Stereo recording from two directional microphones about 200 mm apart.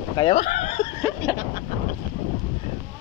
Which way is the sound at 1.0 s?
10° right (ahead or behind).